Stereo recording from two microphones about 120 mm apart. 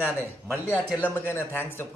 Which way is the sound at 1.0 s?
15° left (ahead or behind).